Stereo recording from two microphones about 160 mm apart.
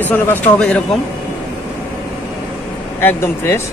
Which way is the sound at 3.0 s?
15° left (ahead or behind).